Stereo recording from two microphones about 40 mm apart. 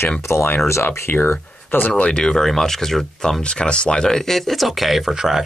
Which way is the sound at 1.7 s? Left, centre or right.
Left.